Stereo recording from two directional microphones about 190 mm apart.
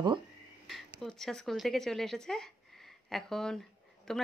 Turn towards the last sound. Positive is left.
turn(degrees=5)  # may be behind; listen again after turning